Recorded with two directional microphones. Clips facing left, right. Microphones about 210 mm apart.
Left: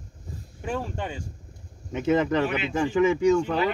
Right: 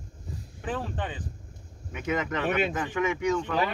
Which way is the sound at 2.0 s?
30° left (ahead or behind).